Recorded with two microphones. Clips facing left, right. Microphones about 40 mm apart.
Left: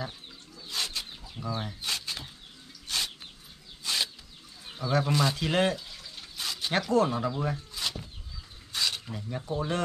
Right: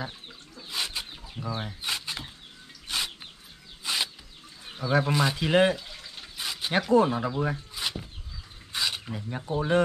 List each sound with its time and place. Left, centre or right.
0.0 s chicken: centre
1.6 s a sound: centre
4.7 s speech: centre